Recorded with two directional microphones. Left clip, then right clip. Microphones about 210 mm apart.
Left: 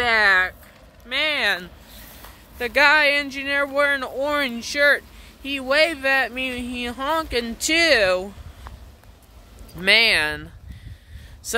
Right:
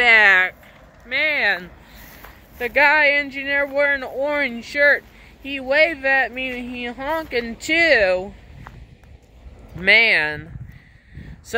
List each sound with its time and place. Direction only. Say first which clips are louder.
0.0 s a sound: right 4 dB; 10° left (ahead or behind)
2.6 s speech: right 1 dB; 15° left (ahead or behind)
9.8 s speech: right 2 dB; 15° left (ahead or behind)